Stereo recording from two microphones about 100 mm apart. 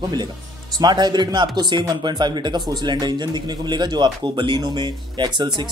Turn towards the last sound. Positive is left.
turn(degrees=-50)  # may be behind; listen again after turning